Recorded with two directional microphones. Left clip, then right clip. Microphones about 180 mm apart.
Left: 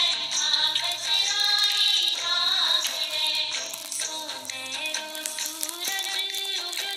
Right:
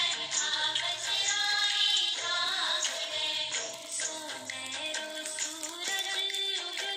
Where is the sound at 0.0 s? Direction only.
45° left (ahead or behind).